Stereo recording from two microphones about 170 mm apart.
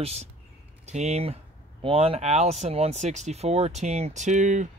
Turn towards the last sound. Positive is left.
turn(degrees=-45)  # may be behind; listen again after turning